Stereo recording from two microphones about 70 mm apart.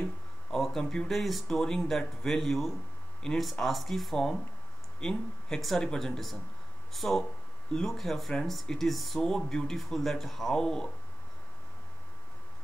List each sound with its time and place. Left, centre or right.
0.6 s speech: centre